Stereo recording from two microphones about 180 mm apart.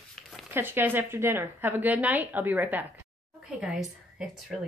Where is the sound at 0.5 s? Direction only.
10° right (ahead or behind).